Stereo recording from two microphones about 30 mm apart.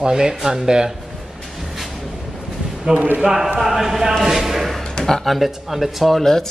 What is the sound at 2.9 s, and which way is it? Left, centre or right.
Speech, right.